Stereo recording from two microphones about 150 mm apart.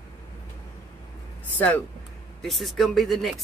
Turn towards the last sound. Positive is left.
turn(degrees=0)  # may be behind; listen again after turning